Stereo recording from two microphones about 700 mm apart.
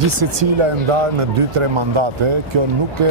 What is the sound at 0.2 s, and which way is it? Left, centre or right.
Speech, right.